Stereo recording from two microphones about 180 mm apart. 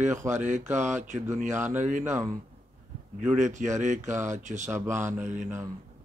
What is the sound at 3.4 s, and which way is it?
Speech, 40° right (ahead or behind).